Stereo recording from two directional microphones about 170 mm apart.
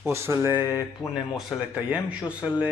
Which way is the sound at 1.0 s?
Centre (ahead or behind).